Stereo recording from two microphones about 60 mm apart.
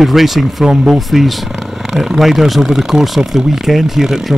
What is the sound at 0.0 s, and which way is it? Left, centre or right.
Speech, centre.